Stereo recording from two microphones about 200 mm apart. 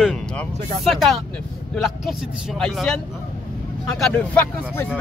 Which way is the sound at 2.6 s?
Centre (ahead or behind).